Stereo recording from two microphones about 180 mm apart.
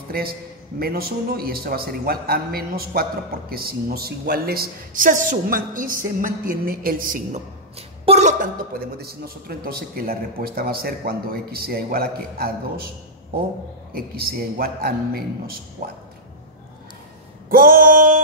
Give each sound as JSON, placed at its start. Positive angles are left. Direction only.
{"t": 0.1, "sound": "a man's voice", "side_deg": -55}
{"t": 8.0, "sound": "a man's voice", "side_deg": -40}
{"t": 13.9, "sound": "a man's voice", "side_deg": -55}
{"t": 17.5, "sound": "a sound", "side_deg": -55}